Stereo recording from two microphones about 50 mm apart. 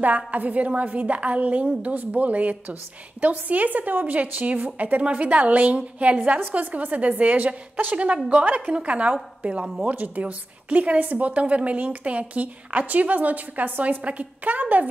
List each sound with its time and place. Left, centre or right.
0.0 s a woman's voice: right